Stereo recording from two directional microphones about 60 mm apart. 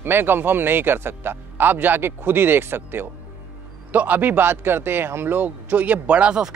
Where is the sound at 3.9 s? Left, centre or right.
Right.